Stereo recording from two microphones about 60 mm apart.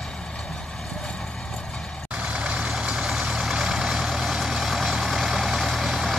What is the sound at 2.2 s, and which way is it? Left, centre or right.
Vehicle, centre.